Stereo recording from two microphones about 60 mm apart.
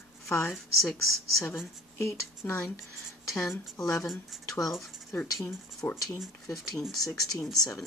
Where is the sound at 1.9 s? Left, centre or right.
Left.